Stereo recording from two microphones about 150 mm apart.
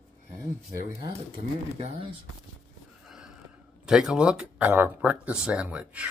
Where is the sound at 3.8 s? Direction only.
5° right (ahead or behind).